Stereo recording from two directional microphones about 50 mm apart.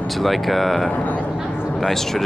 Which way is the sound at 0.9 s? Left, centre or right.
Left.